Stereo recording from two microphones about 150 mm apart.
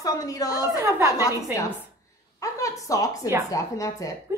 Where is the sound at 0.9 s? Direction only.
20° right (ahead or behind).